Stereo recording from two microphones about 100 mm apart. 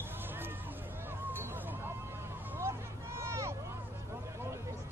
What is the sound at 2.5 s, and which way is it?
Vehicle, 25° right (ahead or behind).